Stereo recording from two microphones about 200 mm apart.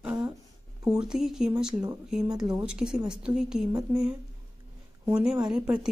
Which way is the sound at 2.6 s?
5° right (ahead or behind).